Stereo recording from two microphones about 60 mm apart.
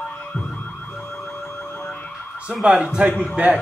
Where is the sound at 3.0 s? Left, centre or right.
Right.